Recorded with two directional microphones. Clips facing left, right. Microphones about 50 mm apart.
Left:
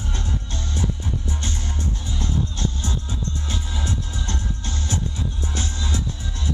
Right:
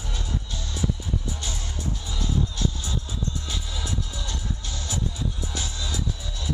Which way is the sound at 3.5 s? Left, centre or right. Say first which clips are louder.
Left 4 dB; left.